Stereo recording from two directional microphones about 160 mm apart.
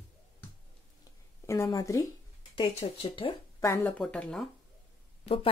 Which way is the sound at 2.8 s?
35° left (ahead or behind).